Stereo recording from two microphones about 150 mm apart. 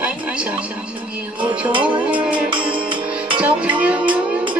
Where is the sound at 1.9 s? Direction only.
10° right (ahead or behind).